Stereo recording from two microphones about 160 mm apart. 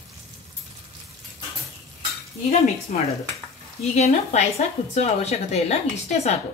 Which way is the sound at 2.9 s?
50° left (ahead or behind).